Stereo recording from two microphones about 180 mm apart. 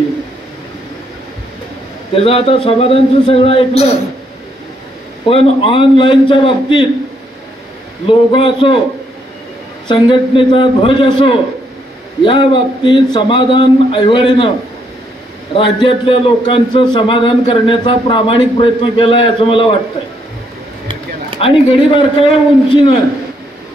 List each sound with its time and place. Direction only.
2.1 s a man's voice: 30° left (ahead or behind)
5.3 s a man's voice: 30° left (ahead or behind)
8.1 s a man's voice: 25° left (ahead or behind)
9.8 s a man's voice: 25° left (ahead or behind)
15.5 s a man's voice: 25° left (ahead or behind)
21.4 s a man's voice: 30° left (ahead or behind)